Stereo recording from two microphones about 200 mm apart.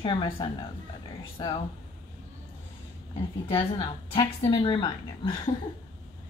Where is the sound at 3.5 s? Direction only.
25° left (ahead or behind).